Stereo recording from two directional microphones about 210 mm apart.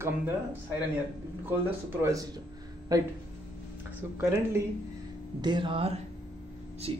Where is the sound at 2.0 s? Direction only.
15° right (ahead or behind).